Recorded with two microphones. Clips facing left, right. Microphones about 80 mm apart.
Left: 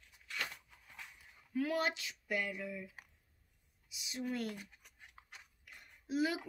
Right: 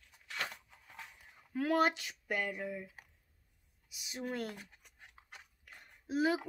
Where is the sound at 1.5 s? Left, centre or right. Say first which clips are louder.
Right 5 dB; right.